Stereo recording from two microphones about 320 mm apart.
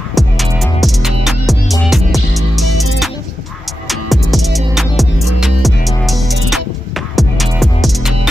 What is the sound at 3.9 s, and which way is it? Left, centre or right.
Music, centre.